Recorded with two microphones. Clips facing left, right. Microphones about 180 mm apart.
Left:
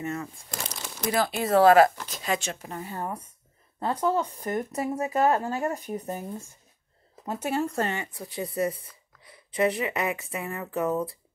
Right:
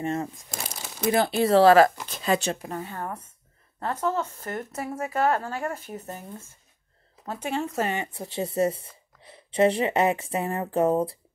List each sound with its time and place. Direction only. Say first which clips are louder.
0.0 s speech: right 4 dB; 25° right (ahead or behind)
2.8 s speech: even; 15° left (ahead or behind)
7.4 s speech: left 1 dB; centre (ahead or behind)
7.8 s speech: right 2 dB; 20° right (ahead or behind)